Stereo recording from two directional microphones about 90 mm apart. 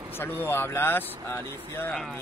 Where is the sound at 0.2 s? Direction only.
25° left (ahead or behind).